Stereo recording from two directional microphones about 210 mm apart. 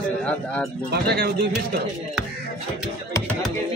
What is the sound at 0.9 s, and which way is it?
Speech, 50° right (ahead or behind).